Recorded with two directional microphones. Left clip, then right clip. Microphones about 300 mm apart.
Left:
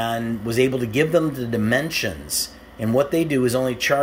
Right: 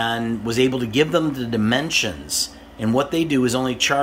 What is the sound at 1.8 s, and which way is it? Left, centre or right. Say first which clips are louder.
Speech: right 3 dB; right.